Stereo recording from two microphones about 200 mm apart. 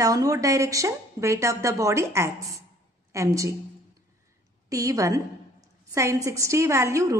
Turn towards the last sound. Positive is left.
turn(degrees=-15)  # may be behind; listen again after turning